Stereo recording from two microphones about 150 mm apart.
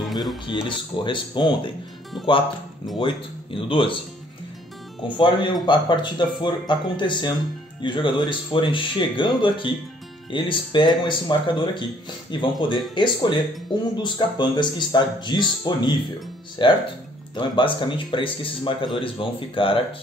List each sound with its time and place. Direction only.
0.1 s music: centre (ahead or behind)
0.7 s speech: 30° left (ahead or behind)
3.0 s speech: 35° left (ahead or behind)
5.0 s speech: 30° left (ahead or behind)